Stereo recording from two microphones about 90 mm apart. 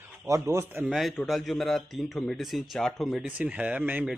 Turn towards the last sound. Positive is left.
turn(degrees=-20)  # may be behind; listen again after turning